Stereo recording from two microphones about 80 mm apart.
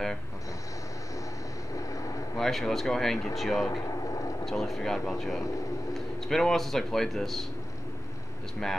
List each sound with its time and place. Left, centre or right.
1.8 s vehicle: left
2.3 s speech: centre